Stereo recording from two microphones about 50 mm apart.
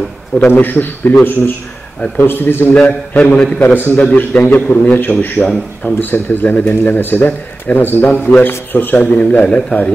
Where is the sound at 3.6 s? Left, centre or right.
Left.